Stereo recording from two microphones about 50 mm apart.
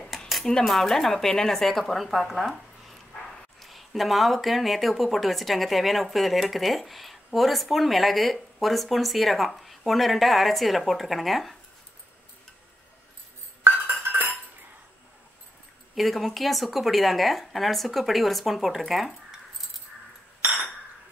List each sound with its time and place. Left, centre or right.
0.7 s speech: centre
13.7 s music: right
15.9 s speech: centre